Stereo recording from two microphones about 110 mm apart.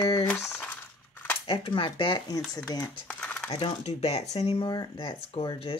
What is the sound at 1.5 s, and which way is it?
Speech, 55° left (ahead or behind).